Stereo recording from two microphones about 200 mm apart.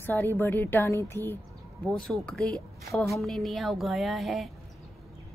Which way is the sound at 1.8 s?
5° left (ahead or behind).